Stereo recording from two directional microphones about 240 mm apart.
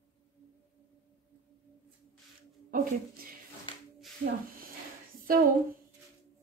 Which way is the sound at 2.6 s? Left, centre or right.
Right.